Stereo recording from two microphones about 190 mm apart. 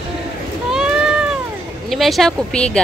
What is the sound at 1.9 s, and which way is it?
Speech, centre (ahead or behind).